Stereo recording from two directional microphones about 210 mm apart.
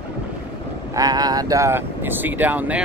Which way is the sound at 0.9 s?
20° right (ahead or behind).